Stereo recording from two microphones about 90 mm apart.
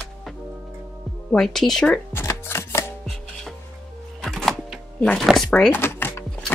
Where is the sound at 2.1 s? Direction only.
30° left (ahead or behind).